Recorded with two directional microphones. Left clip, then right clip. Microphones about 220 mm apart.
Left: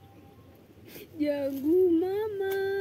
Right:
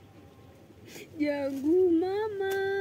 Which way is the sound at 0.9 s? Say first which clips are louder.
Left 1 dB; 5° right (ahead or behind).